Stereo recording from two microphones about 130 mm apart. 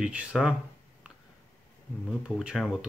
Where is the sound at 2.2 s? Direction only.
5° right (ahead or behind).